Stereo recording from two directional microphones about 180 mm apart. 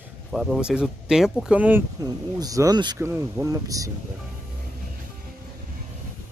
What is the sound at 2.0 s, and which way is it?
Speech, 20° right (ahead or behind).